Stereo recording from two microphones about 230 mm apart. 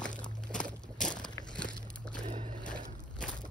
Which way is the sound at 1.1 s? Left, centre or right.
Centre.